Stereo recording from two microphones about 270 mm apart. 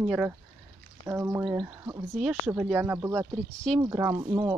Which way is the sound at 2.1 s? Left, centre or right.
Centre.